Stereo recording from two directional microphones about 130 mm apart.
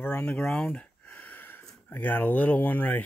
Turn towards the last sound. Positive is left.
turn(degrees=15)  # may be behind; listen again after turning